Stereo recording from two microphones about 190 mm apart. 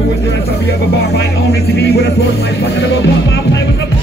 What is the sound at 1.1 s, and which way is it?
Speech, 60° left (ahead or behind).